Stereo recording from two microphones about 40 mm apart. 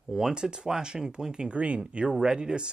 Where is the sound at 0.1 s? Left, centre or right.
Centre.